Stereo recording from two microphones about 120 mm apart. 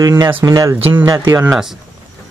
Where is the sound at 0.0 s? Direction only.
30° right (ahead or behind).